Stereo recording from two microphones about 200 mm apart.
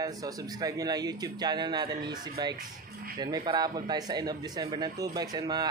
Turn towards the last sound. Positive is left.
turn(degrees=-20)  # may be behind; listen again after turning